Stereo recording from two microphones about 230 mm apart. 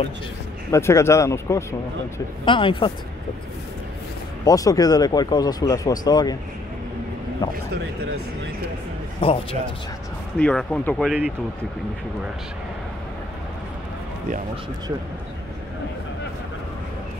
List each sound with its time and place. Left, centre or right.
0.7 s a man's voice: centre
4.5 s a man's voice: centre
9.2 s a man's voice: left
10.4 s speech: centre